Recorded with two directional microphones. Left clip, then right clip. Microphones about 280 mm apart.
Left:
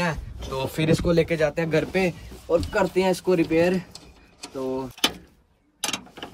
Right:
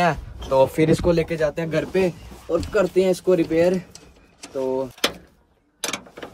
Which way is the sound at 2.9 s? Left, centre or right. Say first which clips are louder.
Right 3 dB; centre.